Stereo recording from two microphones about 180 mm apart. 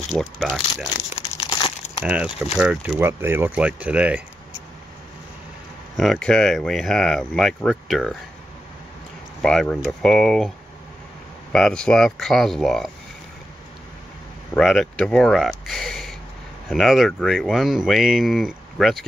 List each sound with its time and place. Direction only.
0.1 s speech: centre (ahead or behind)
1.2 s crumpling: 25° left (ahead or behind)
2.0 s speech: 10° right (ahead or behind)
5.9 s speech: centre (ahead or behind)
9.4 s speech: 5° left (ahead or behind)
11.5 s speech: 5° left (ahead or behind)
14.5 s speech: 5° left (ahead or behind)